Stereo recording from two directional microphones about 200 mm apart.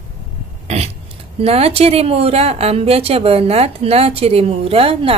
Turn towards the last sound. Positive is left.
turn(degrees=-30)  # may be behind; listen again after turning